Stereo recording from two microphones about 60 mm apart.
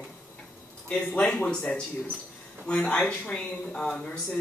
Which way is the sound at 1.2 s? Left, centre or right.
Centre.